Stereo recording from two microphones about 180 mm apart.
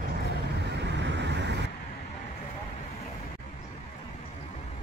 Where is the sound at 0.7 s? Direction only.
75° right (ahead or behind).